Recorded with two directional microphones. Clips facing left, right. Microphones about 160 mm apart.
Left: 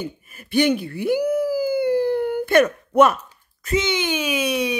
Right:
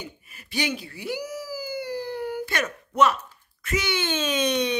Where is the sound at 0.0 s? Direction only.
50° left (ahead or behind).